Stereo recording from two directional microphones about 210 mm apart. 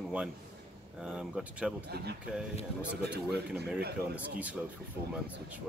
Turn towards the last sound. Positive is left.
turn(degrees=-5)  # may be behind; listen again after turning